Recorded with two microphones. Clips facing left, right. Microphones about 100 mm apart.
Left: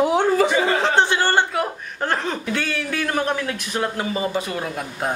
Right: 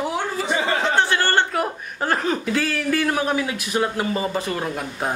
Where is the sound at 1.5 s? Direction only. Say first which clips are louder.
Even; centre (ahead or behind).